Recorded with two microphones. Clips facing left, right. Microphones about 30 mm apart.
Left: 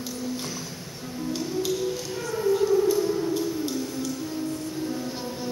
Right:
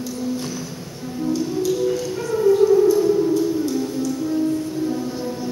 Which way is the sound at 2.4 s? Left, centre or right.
Centre.